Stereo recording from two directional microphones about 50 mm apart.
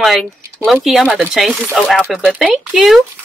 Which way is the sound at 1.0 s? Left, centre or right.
Centre.